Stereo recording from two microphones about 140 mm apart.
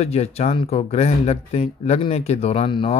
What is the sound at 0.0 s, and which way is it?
Speech, 50° left (ahead or behind).